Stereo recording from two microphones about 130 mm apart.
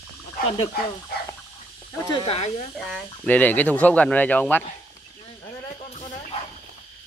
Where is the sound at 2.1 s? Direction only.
40° left (ahead or behind).